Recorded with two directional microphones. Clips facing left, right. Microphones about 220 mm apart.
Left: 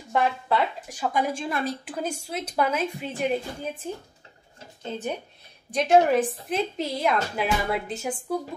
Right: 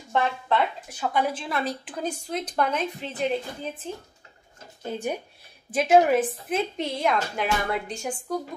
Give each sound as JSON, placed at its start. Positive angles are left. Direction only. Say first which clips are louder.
{"t": 0.1, "sound": "a woman's voice", "louder": "left 1 dB", "side_deg": 10}
{"t": 4.8, "sound": "a woman's voice", "louder": "right 1 dB", "side_deg": -10}